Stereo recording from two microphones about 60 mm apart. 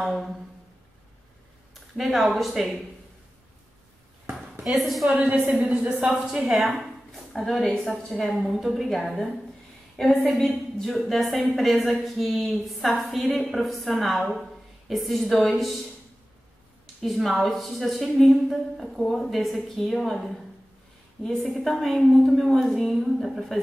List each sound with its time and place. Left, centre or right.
0.0 s a sound: centre
2.0 s a woman's voice: centre
4.6 s a woman's voice: centre
5.1 s a woman's voice: right
7.1 s a woman's voice: centre
16.8 s a woman's voice: centre